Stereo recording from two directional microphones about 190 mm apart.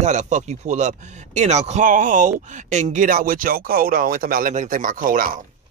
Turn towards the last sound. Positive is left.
turn(degrees=-45)  # may be behind; listen again after turning